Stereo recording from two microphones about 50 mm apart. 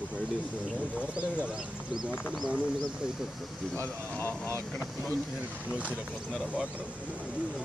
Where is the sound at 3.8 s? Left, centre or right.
Left.